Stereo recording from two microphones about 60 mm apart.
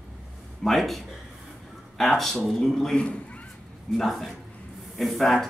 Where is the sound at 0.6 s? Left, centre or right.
Centre.